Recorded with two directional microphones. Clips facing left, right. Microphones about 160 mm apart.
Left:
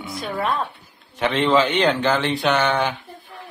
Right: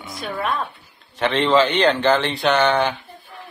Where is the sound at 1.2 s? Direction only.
5° left (ahead or behind).